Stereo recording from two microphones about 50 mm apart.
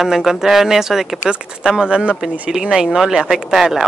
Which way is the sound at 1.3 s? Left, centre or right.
Centre.